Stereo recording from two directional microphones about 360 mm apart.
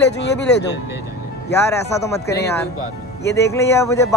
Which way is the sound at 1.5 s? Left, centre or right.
Centre.